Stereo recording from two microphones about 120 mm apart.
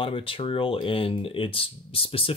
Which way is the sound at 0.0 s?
50° left (ahead or behind).